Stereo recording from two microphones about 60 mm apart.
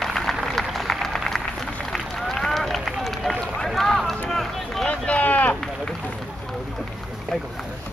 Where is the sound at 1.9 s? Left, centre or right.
Centre.